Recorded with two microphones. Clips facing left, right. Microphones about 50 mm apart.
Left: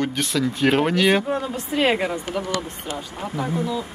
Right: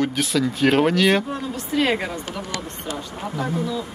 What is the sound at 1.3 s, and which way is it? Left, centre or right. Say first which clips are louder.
Speech: left 2 dB; centre.